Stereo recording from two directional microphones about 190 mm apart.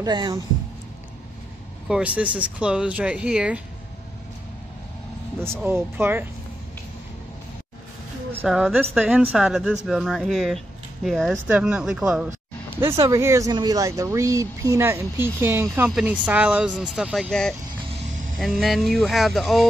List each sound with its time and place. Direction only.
0.0 s speech: 20° right (ahead or behind)
1.9 s a woman's voice: 5° right (ahead or behind)
5.5 s a woman's voice: 10° right (ahead or behind)
8.3 s speech: 10° right (ahead or behind)
13.0 s a woman's voice: 15° right (ahead or behind); by 19.7 s centre (ahead or behind)